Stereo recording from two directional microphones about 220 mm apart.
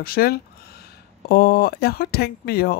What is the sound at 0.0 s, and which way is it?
Speech, 45° left (ahead or behind).